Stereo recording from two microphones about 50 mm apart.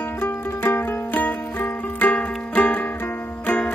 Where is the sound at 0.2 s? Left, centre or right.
Left.